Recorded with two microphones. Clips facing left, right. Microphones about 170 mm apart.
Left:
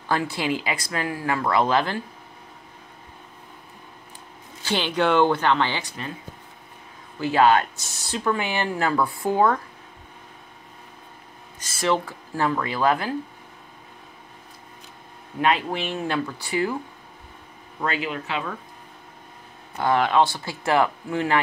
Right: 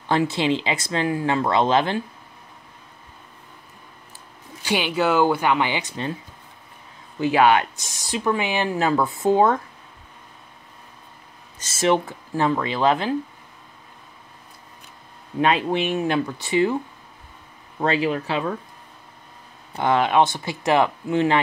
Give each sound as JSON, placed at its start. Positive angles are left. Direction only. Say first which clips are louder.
{"t": 0.1, "sound": "speech", "louder": "right 4 dB", "side_deg": -20}
{"t": 4.6, "sound": "speech", "louder": "right 1 dB", "side_deg": -10}
{"t": 7.2, "sound": "speech", "louder": "right 1 dB", "side_deg": -15}
{"t": 11.6, "sound": "speech", "louder": "right 3 dB", "side_deg": -20}
{"t": 15.4, "sound": "speech", "louder": "right 3 dB", "side_deg": -20}
{"t": 17.7, "sound": "speech", "louder": "right 6 dB", "side_deg": -30}
{"t": 19.7, "sound": "speech", "louder": "right 1 dB", "side_deg": -20}